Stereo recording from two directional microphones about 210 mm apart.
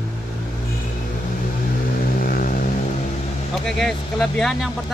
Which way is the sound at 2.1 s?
40° left (ahead or behind).